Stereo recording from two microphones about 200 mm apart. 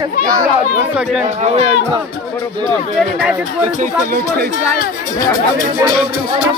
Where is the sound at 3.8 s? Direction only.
45° right (ahead or behind).